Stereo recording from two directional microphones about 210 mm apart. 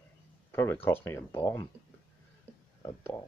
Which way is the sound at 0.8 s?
10° left (ahead or behind).